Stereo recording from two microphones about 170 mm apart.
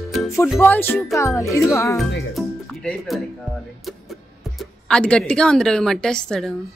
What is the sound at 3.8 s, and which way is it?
A woman's voice, centre (ahead or behind).